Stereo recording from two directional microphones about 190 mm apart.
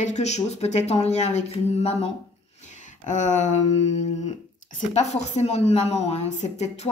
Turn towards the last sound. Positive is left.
turn(degrees=35)  # may be behind; listen again after turning